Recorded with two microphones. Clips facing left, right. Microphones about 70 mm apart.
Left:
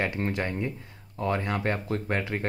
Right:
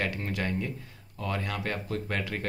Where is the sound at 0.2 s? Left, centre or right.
Left.